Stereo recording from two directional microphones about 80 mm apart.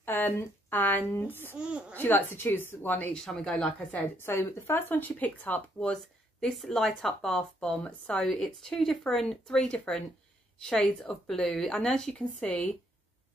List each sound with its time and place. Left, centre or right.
0.0 s speech: left
1.6 s a woman's voice: centre
2.0 s speech: left
3.1 s speech: centre
4.2 s speech: left
6.4 s speech: centre